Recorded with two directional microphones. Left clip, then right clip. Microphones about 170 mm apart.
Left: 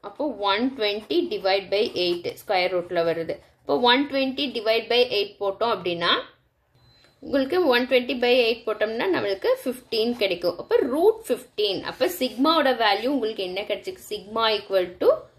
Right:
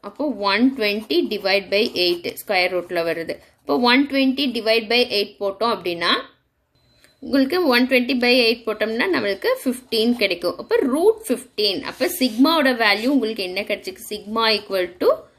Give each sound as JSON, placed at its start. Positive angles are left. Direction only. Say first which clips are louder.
{"t": 0.0, "sound": "a woman's voice", "louder": "right 3 dB", "side_deg": -30}
{"t": 7.2, "sound": "a woman's voice", "louder": "right 3 dB", "side_deg": -25}